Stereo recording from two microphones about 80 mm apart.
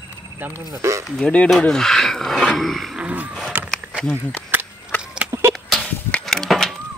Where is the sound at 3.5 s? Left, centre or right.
Centre.